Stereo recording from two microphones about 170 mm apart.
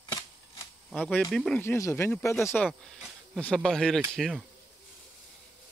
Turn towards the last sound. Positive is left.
turn(degrees=5)  # may be behind; listen again after turning